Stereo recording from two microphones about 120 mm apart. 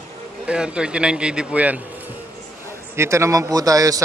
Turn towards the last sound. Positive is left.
turn(degrees=-30)  # may be behind; listen again after turning